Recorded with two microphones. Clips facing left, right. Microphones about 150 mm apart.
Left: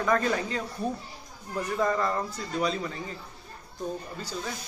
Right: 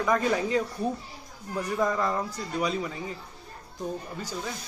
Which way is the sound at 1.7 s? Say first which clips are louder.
Even; 10° right (ahead or behind).